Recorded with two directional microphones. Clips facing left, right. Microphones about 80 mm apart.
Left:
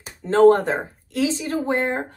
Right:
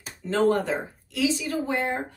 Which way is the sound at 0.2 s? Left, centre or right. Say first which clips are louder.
Left 8 dB; left.